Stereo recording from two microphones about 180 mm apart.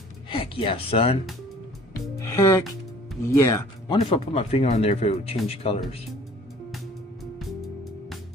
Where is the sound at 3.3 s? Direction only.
15° left (ahead or behind).